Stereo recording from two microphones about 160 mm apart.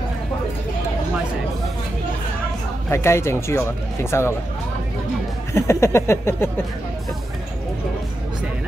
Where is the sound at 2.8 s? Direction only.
15° left (ahead or behind).